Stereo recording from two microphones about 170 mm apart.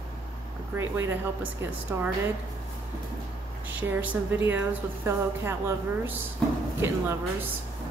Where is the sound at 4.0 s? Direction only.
10° right (ahead or behind).